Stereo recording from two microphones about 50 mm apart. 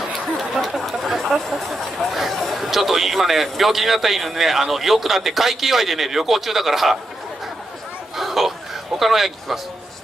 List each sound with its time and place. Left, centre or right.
0.1 s speech: centre
8.2 s a sound: centre
9.0 s speech: centre